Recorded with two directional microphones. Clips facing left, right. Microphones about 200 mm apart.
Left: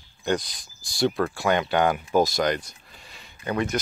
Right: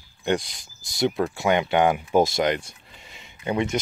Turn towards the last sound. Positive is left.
turn(degrees=-20)  # may be behind; listen again after turning